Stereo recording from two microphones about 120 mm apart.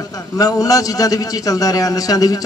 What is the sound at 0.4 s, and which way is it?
A man's voice, 30° left (ahead or behind).